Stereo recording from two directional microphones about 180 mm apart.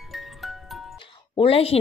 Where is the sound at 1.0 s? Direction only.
30° left (ahead or behind).